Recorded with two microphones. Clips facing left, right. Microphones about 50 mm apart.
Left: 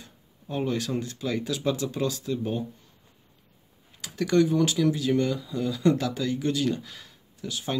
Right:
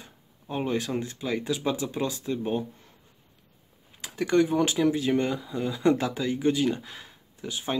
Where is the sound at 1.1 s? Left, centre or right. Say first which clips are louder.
Even; centre.